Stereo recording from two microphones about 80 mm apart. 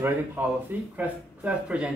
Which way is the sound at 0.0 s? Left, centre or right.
Right.